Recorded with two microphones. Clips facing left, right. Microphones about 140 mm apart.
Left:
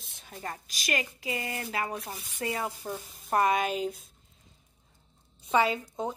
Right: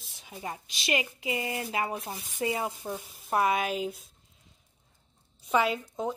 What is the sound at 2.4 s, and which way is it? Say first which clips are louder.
Speech: right 2 dB; 20° right (ahead or behind).